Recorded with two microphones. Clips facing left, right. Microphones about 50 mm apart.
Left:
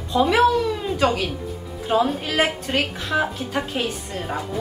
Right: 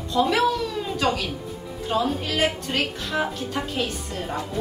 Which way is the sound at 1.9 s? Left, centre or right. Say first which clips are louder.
Left 4 dB; left.